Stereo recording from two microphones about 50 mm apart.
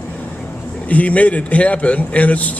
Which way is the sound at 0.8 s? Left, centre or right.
Left.